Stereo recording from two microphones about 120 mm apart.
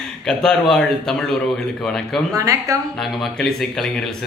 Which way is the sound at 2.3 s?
30° right (ahead or behind).